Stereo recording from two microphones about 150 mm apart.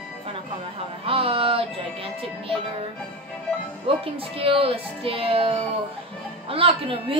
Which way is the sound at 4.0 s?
35° right (ahead or behind).